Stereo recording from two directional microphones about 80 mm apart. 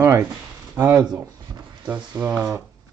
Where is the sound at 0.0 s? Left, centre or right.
Right.